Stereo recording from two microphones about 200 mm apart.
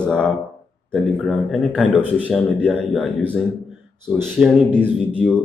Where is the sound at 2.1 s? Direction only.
5° left (ahead or behind).